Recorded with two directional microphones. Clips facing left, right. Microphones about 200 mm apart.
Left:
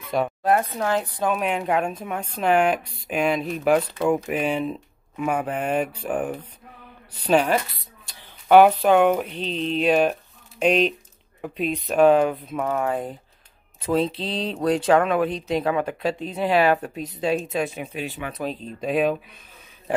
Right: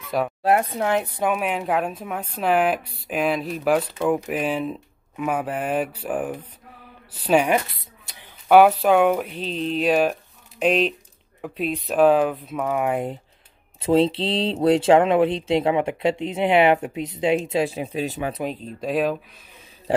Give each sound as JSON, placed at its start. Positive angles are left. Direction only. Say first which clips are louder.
{"t": 0.1, "sound": "a woman's voice", "louder": "even", "side_deg": -5}
{"t": 0.7, "sound": "speech", "louder": "right 2 dB", "side_deg": -20}
{"t": 1.3, "sound": "a woman's voice", "louder": "left 1 dB", "side_deg": -5}
{"t": 12.7, "sound": "speech", "louder": "right 5 dB", "side_deg": -20}
{"t": 18.8, "sound": "a woman's voice", "louder": "left 1 dB", "side_deg": 0}